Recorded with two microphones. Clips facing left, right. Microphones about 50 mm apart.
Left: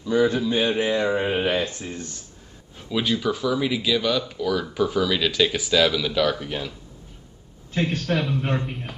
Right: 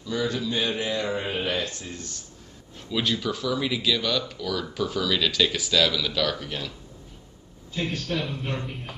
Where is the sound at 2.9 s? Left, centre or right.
Centre.